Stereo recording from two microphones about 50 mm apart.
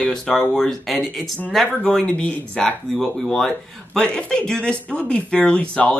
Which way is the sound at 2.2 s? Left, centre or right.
Left.